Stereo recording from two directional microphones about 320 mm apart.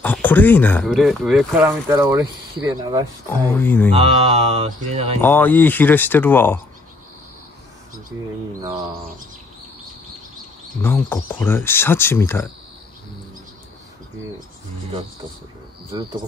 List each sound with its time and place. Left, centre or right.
0.0 s speech: centre
3.4 s speech: centre
3.9 s speech: centre
5.2 s speech: centre
10.8 s speech: centre